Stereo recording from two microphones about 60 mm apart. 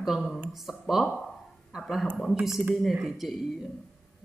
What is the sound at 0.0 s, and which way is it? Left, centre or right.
Speech, centre.